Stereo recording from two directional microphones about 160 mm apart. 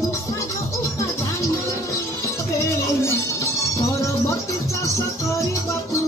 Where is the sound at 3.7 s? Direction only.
20° left (ahead or behind).